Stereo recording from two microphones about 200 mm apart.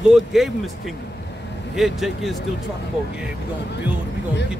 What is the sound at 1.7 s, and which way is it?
Speech, centre (ahead or behind).